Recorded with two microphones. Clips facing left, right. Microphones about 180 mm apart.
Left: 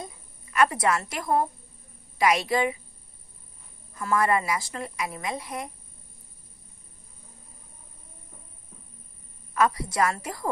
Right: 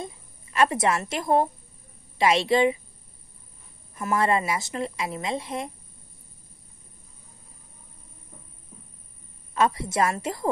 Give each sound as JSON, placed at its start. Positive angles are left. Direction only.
{"t": 0.0, "sound": "a woman's voice", "side_deg": -25}
{"t": 3.9, "sound": "a woman's voice", "side_deg": -25}
{"t": 9.5, "sound": "a woman's voice", "side_deg": -25}